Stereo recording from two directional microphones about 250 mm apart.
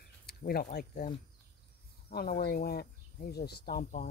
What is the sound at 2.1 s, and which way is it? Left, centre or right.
Speech, left.